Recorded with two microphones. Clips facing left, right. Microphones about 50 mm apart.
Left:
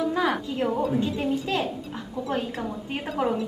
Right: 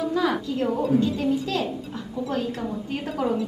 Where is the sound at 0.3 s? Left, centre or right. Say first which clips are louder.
Right 1 dB; centre.